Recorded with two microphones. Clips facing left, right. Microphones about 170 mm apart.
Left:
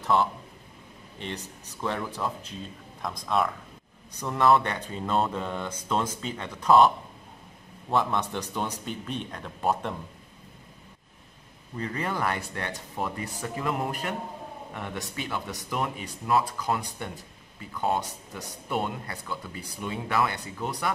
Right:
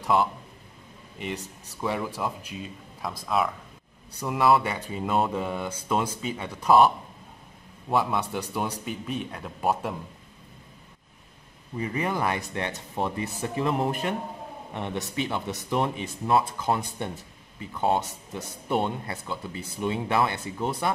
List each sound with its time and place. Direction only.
0.0 s a man's voice: 10° right (ahead or behind)
7.9 s speech: 10° right (ahead or behind)
11.7 s speech: 10° right (ahead or behind)